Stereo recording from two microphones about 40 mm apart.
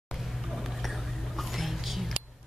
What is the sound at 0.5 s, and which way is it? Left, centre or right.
Whispering, centre.